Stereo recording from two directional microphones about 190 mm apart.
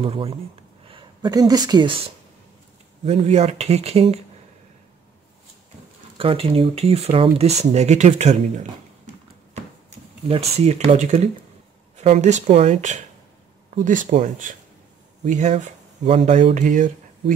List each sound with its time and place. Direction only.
0.0 s speech: 30° right (ahead or behind)
3.1 s speech: 35° right (ahead or behind)
6.1 s speech: 30° right (ahead or behind)
9.5 s a sound: 35° right (ahead or behind)
12.0 s speech: 35° right (ahead or behind)